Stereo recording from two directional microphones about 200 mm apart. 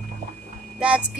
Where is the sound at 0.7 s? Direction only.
5° right (ahead or behind).